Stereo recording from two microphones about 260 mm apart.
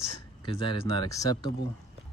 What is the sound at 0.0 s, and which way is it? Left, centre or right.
Speech, centre.